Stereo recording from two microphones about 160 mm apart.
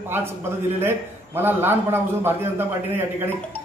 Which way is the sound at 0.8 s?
15° right (ahead or behind).